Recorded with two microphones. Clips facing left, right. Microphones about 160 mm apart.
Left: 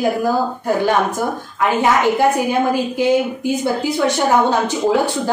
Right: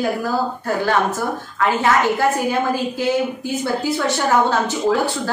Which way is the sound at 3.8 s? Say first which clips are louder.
Left 4 dB; 15° left (ahead or behind).